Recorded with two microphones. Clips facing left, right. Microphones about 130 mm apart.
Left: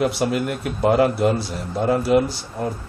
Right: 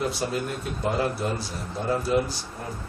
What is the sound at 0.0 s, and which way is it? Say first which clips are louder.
Speech: left 7 dB; 80° left.